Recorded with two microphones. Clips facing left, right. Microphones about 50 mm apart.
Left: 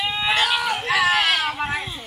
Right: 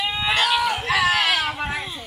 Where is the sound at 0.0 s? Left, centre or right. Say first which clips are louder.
Even; centre.